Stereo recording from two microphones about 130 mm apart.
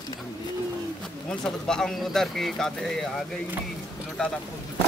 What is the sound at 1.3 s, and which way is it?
Speech, 5° left (ahead or behind).